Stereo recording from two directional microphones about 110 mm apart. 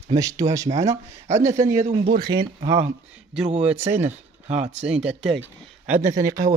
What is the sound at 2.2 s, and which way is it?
Speech, 40° right (ahead or behind).